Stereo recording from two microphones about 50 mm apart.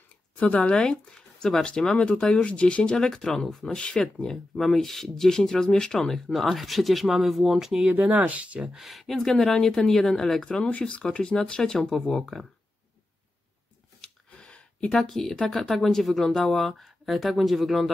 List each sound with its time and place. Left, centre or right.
0.4 s speech: left
0.7 s speech: centre
3.8 s speech: left
4.6 s speech: centre
7.5 s speech: centre
7.9 s speech: right
8.7 s speech: centre
9.1 s speech: centre
9.6 s speech: left
9.8 s speech: centre
14.0 s a sound: centre
14.9 s speech: centre